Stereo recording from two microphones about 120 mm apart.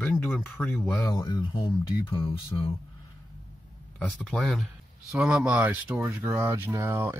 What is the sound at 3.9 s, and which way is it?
Speech, 5° left (ahead or behind).